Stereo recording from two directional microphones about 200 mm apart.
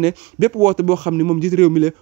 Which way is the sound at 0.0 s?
30° right (ahead or behind).